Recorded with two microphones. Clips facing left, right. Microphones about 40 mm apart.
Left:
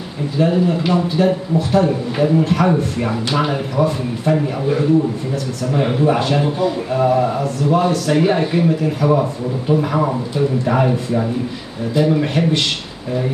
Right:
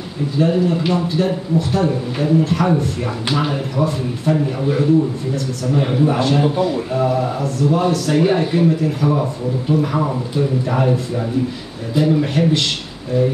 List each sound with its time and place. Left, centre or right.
0.4 s speech: centre